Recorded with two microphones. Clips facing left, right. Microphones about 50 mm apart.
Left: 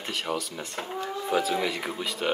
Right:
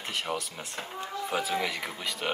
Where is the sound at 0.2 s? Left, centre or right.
Centre.